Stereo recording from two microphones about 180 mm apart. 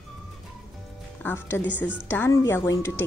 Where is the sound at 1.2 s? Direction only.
10° left (ahead or behind).